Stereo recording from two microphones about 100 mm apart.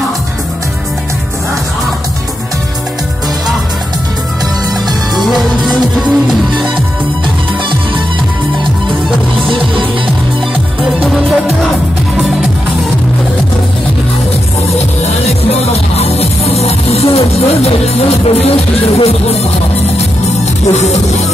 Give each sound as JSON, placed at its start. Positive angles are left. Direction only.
{"t": 5.1, "sound": "music", "side_deg": 0}
{"t": 9.5, "sound": "music", "side_deg": -55}
{"t": 14.7, "sound": "music", "side_deg": 90}
{"t": 20.6, "sound": "music", "side_deg": 90}